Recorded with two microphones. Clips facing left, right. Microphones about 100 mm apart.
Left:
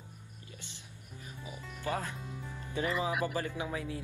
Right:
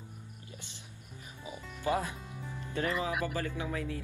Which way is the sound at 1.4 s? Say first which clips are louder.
Right 4 dB; 20° right (ahead or behind).